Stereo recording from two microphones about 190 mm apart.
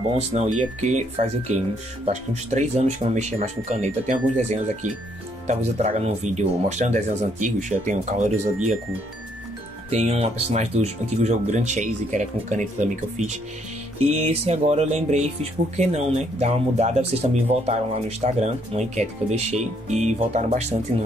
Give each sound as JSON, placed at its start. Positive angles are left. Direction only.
{"t": 0.3, "sound": "speech", "side_deg": -35}
{"t": 9.8, "sound": "speech", "side_deg": -35}